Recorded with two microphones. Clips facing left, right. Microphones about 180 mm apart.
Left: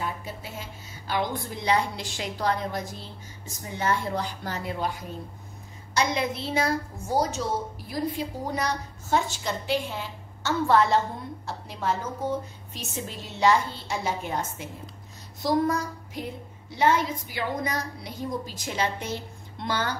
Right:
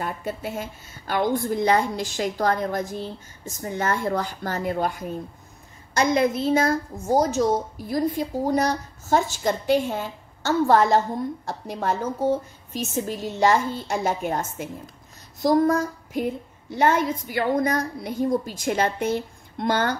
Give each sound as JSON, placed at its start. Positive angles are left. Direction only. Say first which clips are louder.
{"t": 0.0, "sound": "a woman's voice", "louder": "right 5 dB", "side_deg": -50}